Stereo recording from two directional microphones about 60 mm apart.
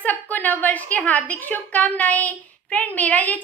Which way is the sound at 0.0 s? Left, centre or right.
Left.